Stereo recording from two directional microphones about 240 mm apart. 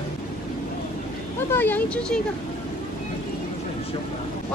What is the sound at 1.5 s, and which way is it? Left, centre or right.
Speech, centre.